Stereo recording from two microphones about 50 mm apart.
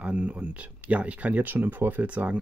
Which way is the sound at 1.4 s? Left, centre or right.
Right.